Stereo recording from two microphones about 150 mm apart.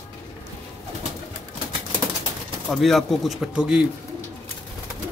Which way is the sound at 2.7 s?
Centre (ahead or behind).